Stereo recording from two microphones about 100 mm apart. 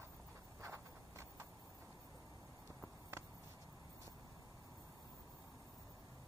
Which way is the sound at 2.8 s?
25° right (ahead or behind).